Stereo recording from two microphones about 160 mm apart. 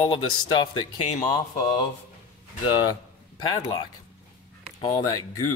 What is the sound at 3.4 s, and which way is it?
Speech, 30° left (ahead or behind).